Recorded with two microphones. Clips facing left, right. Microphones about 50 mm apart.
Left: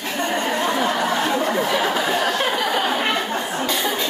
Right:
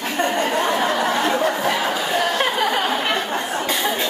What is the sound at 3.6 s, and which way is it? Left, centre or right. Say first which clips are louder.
Chuckle: left 1 dB; centre.